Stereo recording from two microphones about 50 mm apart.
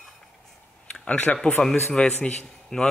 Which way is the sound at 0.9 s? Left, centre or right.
Left.